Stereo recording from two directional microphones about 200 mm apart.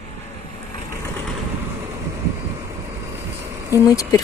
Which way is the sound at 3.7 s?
15° left (ahead or behind).